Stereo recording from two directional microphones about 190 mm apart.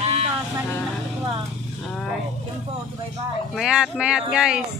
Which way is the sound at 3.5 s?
5° right (ahead or behind).